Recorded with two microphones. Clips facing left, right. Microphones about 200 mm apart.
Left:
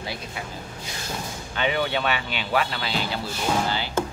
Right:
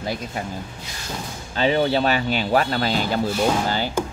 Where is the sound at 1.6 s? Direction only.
35° right (ahead or behind).